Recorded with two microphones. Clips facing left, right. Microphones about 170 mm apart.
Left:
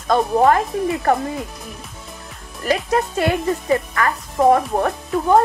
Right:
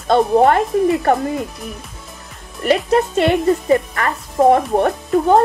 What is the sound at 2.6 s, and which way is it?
Speech, 25° right (ahead or behind).